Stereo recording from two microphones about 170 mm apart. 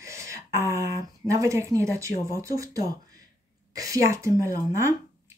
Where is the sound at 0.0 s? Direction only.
20° right (ahead or behind).